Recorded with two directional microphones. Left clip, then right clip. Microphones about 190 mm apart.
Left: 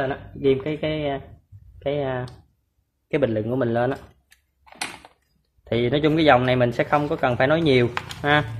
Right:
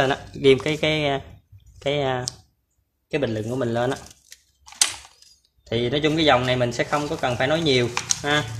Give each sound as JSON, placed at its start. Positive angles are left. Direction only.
{"t": 0.0, "sound": "speech", "side_deg": -25}
{"t": 3.1, "sound": "speech", "side_deg": 5}
{"t": 5.6, "sound": "speech", "side_deg": 5}